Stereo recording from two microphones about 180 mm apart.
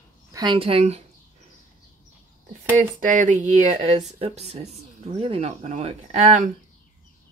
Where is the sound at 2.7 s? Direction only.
45° right (ahead or behind).